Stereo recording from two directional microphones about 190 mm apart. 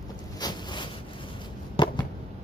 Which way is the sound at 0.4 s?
25° left (ahead or behind).